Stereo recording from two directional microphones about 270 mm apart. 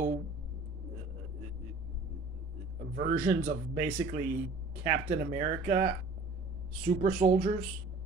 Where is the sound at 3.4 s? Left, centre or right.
Right.